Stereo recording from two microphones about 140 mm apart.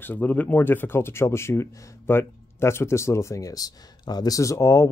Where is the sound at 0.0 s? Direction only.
10° left (ahead or behind).